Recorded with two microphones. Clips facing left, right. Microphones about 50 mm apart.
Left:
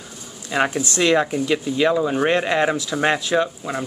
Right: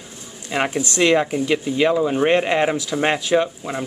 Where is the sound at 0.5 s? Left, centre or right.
Centre.